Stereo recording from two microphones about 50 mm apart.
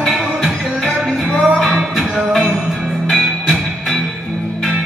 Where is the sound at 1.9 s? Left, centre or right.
Centre.